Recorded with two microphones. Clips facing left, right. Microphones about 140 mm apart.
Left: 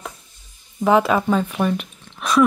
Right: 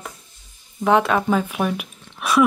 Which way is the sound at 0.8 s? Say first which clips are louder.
Left 1 dB; centre (ahead or behind).